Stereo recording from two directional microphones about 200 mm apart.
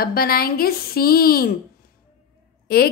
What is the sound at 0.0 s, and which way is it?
A woman's voice, 50° left (ahead or behind).